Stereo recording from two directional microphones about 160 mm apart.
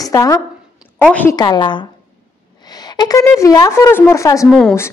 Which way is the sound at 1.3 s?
25° left (ahead or behind).